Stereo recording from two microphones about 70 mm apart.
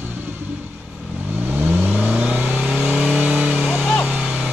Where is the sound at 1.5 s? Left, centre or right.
Right.